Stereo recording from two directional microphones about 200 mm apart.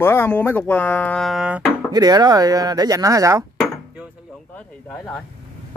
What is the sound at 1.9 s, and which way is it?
Speech, 20° right (ahead or behind).